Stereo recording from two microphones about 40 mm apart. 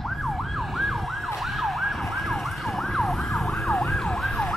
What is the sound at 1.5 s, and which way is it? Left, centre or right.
Emergency vehicle, centre.